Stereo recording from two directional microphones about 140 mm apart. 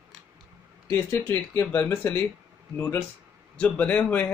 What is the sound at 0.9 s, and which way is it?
Speech, 15° left (ahead or behind).